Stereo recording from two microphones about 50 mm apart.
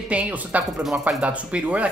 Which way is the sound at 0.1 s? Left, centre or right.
Right.